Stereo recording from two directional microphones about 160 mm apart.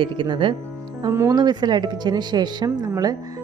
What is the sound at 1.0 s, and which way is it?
Speech, 20° right (ahead or behind).